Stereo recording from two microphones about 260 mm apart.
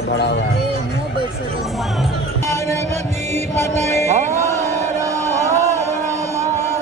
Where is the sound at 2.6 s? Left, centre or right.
Right.